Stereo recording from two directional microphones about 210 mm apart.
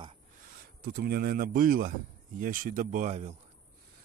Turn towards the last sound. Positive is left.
turn(degrees=-30)  # may be behind; listen again after turning